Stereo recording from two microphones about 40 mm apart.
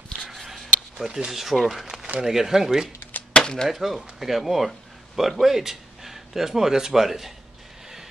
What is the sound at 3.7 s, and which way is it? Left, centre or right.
Speech, centre.